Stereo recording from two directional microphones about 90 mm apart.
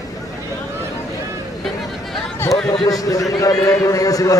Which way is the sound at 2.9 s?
40° left (ahead or behind).